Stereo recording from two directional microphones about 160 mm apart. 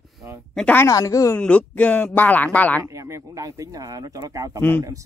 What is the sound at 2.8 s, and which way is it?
Speech, 20° right (ahead or behind).